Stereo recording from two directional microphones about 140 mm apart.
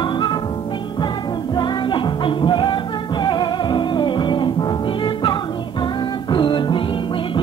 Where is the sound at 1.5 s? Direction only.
30° left (ahead or behind).